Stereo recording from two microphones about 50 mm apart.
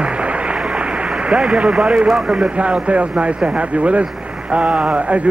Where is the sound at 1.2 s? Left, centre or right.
Right.